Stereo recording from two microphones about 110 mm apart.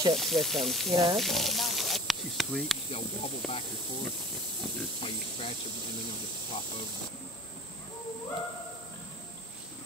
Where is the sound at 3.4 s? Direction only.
Centre (ahead or behind).